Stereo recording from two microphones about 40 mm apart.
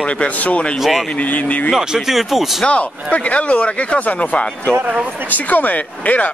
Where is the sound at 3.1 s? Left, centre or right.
Left.